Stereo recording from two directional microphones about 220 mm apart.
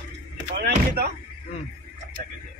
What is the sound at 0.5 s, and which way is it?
Speech, 45° right (ahead or behind).